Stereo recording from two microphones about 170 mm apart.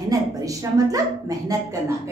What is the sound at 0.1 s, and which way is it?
A woman's voice, 20° right (ahead or behind).